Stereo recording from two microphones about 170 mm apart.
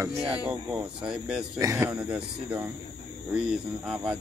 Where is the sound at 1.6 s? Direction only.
15° right (ahead or behind).